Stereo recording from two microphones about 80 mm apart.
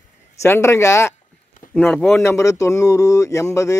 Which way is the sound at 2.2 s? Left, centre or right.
Left.